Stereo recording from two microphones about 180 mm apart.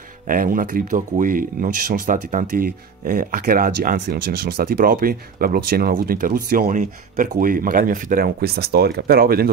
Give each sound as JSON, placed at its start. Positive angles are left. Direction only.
{"t": 0.3, "sound": "speech", "side_deg": -50}